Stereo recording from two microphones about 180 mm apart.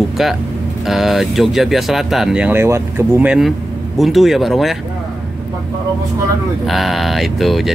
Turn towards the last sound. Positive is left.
turn(degrees=0)  # may be behind; listen again after turning